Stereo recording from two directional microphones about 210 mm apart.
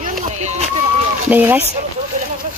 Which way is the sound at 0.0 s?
40° right (ahead or behind).